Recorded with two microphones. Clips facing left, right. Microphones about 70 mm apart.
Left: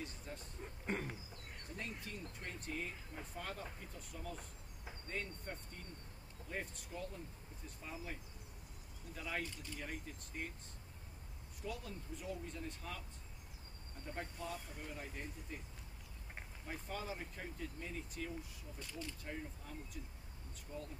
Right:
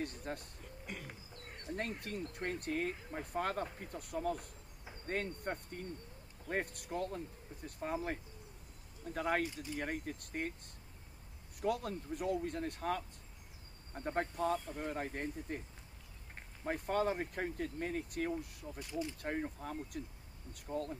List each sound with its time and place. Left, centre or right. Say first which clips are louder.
0.0 s speech: right 7 dB; right
0.6 s a sound: left 5 dB; left
1.8 s speech: right 7 dB; right
11.6 s speech: right 10 dB; right
16.6 s speech: right 11 dB; right
18.8 s speech: right 8 dB; centre
19.2 s speech: right 9 dB; right